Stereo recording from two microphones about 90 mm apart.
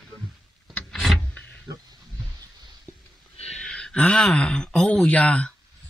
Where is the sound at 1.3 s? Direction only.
15° left (ahead or behind).